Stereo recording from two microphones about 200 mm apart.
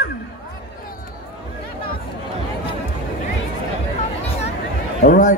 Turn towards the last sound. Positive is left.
turn(degrees=50)  # may be behind; listen again after turning